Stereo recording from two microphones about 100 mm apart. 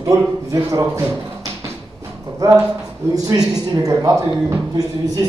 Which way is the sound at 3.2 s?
40° right (ahead or behind).